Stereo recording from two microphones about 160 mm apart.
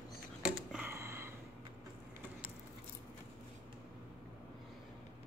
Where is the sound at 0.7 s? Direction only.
15° right (ahead or behind).